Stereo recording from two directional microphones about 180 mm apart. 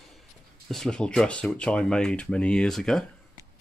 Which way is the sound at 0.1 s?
Centre (ahead or behind).